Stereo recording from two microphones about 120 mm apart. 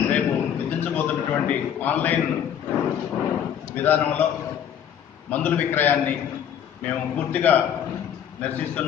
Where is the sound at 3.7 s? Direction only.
15° left (ahead or behind).